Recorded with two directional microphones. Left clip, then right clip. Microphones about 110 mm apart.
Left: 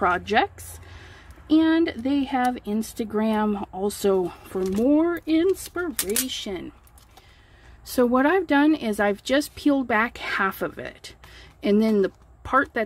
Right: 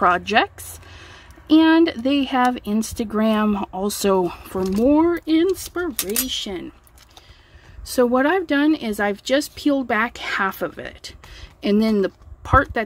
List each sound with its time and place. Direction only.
0.0 s speech: 20° right (ahead or behind)
6.2 s speech: 15° right (ahead or behind)
7.8 s speech: centre (ahead or behind); by 12.8 s 15° right (ahead or behind)